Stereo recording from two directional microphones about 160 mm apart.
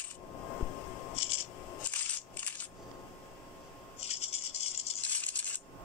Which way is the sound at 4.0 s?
40° left (ahead or behind).